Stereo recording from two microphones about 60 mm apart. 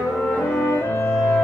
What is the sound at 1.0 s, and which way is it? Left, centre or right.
Music, centre.